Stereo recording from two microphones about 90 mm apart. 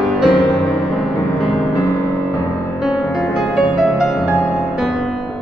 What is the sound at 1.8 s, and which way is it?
Music, 35° left (ahead or behind).